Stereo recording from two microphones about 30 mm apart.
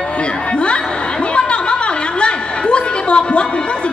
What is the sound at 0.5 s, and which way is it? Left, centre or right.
Chatter, left.